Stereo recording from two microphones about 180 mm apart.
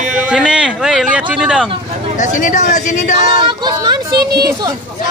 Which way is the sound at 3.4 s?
25° right (ahead or behind).